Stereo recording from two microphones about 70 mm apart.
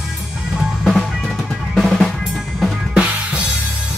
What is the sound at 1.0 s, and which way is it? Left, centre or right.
Drum, centre.